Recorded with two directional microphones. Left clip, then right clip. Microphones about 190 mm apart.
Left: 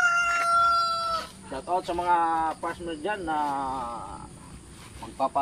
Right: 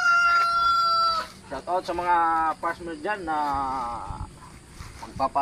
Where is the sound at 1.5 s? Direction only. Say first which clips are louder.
Right 1 dB; centre (ahead or behind).